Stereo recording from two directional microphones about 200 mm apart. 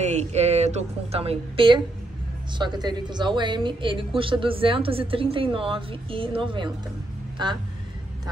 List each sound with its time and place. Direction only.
0.0 s a woman's voice: 35° right (ahead or behind)